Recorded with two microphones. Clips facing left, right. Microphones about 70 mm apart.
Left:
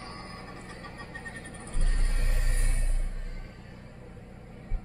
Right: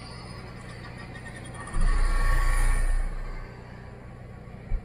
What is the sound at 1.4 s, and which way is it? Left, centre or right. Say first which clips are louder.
Music: right 4 dB; right.